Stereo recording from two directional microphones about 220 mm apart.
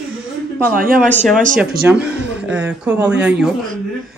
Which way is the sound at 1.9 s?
5° right (ahead or behind).